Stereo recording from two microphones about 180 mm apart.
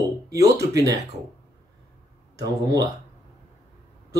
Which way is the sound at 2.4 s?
20° right (ahead or behind).